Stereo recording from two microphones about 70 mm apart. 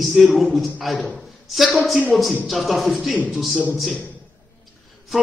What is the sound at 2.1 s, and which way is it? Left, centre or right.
A man's voice, centre.